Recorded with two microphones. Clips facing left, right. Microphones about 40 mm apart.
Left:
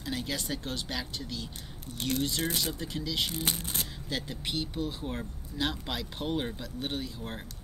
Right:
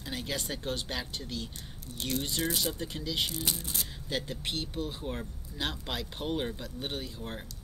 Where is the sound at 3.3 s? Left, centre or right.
Left.